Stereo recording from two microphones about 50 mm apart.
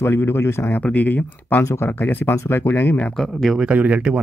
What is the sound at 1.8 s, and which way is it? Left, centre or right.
Speech, left.